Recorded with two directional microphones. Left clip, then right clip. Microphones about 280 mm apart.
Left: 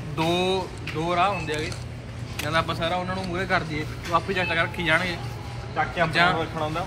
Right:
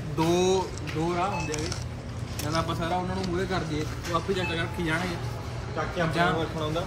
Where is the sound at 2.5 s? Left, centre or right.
Centre.